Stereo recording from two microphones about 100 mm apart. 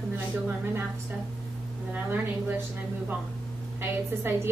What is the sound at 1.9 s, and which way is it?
Speech, 20° right (ahead or behind).